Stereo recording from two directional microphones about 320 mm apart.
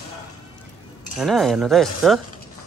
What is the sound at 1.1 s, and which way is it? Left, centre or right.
Speech, centre.